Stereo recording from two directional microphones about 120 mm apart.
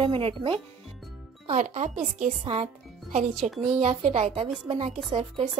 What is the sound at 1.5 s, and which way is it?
Speech, 90° right.